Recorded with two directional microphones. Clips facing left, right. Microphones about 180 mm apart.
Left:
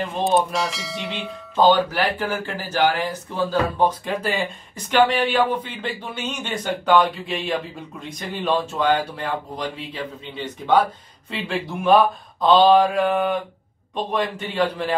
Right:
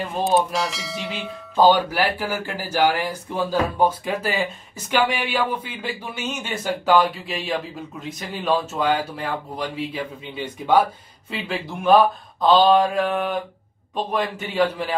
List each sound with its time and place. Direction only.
0.2 s speech: centre (ahead or behind)